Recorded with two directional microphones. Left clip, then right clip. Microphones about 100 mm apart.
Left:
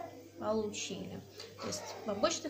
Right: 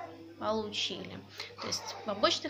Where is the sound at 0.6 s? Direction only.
35° left (ahead or behind).